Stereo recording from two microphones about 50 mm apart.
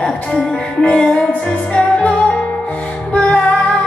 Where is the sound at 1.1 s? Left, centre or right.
Left.